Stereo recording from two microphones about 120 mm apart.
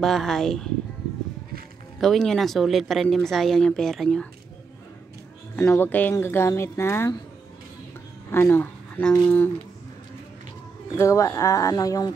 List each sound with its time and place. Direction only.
0.0 s speech: centre (ahead or behind)
2.0 s speech: centre (ahead or behind)
5.6 s speech: 15° left (ahead or behind)
8.3 s speech: 20° left (ahead or behind)
11.0 s speech: 25° left (ahead or behind)